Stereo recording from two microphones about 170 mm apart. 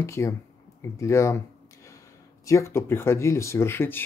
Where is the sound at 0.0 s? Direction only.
15° left (ahead or behind).